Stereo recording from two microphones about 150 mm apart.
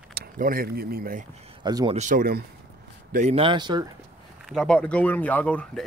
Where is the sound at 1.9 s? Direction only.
55° right (ahead or behind).